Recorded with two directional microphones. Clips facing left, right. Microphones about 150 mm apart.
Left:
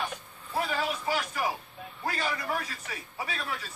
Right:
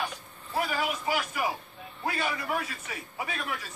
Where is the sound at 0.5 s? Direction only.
5° right (ahead or behind).